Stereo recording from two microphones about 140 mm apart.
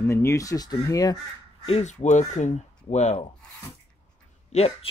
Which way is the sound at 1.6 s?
50° left (ahead or behind).